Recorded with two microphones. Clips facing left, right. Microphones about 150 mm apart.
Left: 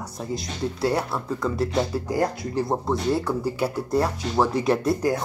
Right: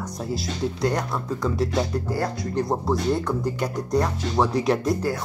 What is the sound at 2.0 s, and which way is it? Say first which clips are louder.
Speech: left 2 dB; 20° left (ahead or behind).